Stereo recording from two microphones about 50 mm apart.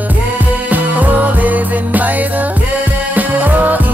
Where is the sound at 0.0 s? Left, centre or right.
Right.